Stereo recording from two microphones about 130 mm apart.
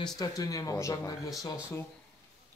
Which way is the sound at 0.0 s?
30° left (ahead or behind).